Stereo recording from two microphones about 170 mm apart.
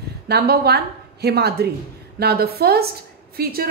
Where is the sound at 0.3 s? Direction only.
70° right (ahead or behind).